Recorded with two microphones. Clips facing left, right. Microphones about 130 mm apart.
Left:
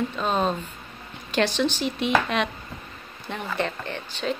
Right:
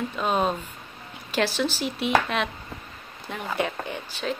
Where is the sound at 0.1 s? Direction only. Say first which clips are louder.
Even; 10° right (ahead or behind).